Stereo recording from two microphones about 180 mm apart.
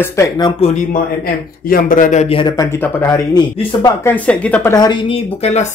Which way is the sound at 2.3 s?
25° left (ahead or behind).